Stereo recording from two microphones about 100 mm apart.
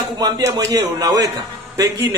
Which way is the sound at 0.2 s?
30° right (ahead or behind).